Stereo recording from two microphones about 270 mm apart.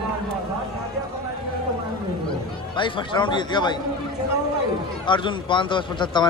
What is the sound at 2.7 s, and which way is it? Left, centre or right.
Speech, centre.